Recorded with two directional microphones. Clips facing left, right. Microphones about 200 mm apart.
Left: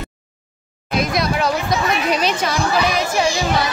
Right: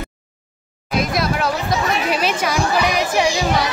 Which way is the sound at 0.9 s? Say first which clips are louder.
Even; centre (ahead or behind).